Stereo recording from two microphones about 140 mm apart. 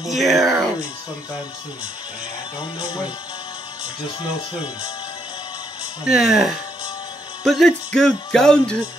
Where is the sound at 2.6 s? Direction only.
30° left (ahead or behind).